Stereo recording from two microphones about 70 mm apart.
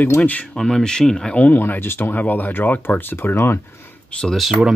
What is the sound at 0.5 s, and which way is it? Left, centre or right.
Speech, centre.